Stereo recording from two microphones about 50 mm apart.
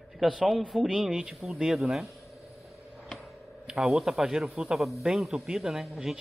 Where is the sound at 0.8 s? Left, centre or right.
Centre.